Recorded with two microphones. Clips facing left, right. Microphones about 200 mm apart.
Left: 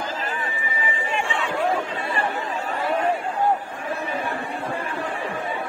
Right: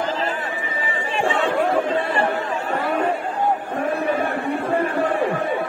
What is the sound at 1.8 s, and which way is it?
Chatter, 55° right (ahead or behind).